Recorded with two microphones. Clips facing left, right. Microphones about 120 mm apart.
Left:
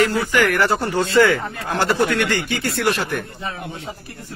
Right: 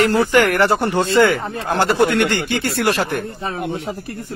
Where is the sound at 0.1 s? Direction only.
30° right (ahead or behind).